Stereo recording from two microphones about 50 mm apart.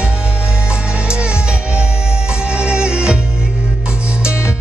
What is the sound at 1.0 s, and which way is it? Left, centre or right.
Music, centre.